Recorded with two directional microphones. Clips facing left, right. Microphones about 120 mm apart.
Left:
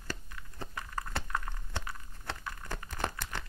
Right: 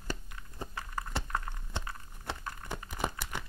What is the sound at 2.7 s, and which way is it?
Crumpling, 15° right (ahead or behind).